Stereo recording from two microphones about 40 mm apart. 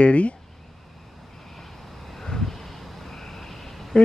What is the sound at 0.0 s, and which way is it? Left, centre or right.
Speech, left.